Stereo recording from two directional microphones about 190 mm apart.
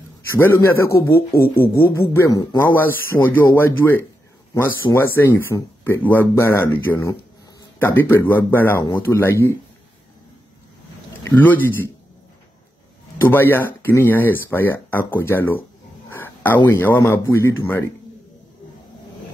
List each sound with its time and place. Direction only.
0.9 s speech: 55° left (ahead or behind)
1.6 s speech: 15° left (ahead or behind)
11.2 s speech: 10° left (ahead or behind)
13.2 s speech: 10° left (ahead or behind)